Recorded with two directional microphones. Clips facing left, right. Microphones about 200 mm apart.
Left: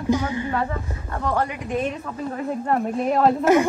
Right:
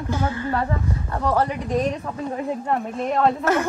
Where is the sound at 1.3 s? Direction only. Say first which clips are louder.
Right 3 dB; 35° right (ahead or behind).